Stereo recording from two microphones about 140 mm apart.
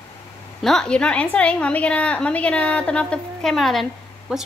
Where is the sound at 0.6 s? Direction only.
5° left (ahead or behind).